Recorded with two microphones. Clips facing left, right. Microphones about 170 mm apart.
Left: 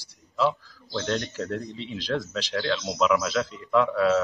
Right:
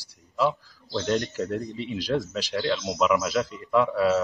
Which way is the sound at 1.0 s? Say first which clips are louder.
Right 3 dB; centre (ahead or behind).